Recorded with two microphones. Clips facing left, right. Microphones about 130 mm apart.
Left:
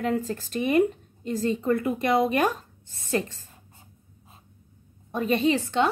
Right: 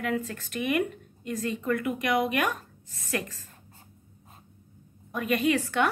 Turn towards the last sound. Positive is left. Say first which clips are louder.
# left 2 dB
turn(degrees=25)  # may be behind; listen again after turning